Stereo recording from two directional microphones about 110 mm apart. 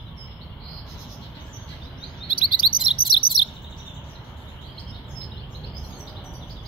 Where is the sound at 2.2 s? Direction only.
50° left (ahead or behind).